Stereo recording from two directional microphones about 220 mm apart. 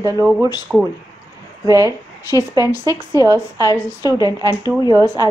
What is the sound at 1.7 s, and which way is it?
Speech, 15° right (ahead or behind).